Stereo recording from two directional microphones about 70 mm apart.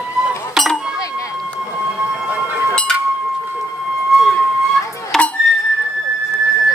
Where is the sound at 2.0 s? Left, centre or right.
Centre.